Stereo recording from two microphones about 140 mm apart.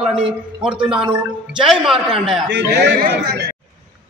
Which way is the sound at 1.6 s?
Centre (ahead or behind).